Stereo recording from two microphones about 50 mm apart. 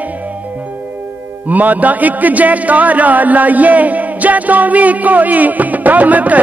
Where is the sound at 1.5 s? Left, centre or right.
Right.